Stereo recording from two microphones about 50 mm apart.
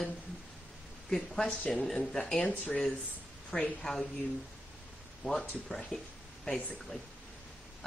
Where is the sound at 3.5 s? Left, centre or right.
Centre.